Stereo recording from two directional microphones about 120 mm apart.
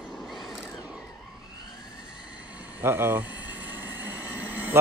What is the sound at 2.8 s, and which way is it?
Speech, 20° right (ahead or behind).